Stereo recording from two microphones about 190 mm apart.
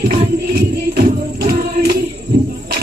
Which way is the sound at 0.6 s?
55° right (ahead or behind).